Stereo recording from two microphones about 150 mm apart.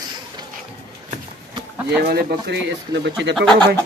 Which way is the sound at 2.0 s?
90° right.